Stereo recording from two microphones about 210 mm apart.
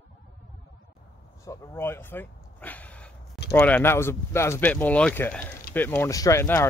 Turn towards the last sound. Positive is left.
turn(degrees=15)  # may be behind; listen again after turning